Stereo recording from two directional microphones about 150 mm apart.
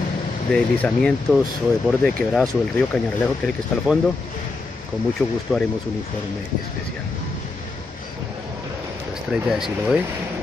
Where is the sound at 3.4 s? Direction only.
Centre (ahead or behind).